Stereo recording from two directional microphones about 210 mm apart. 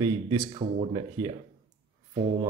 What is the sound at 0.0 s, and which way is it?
Speech, 20° right (ahead or behind).